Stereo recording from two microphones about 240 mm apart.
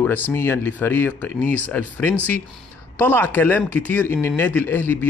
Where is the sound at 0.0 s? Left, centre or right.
Centre.